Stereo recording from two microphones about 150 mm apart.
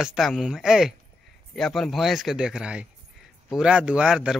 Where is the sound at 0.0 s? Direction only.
Centre (ahead or behind).